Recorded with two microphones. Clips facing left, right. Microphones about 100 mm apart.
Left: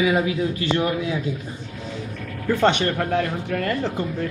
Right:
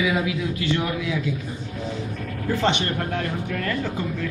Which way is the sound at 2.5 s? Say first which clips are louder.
Left 4 dB; 55° left (ahead or behind).